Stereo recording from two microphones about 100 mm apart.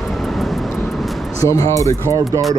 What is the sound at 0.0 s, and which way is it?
Vehicle, centre (ahead or behind).